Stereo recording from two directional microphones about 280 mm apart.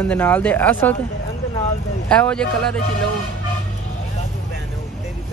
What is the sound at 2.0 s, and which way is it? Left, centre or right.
Speech, centre.